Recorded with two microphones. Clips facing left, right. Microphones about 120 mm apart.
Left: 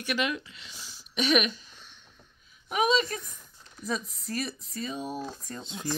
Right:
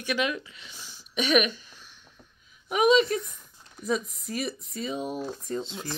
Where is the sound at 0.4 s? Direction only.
15° right (ahead or behind).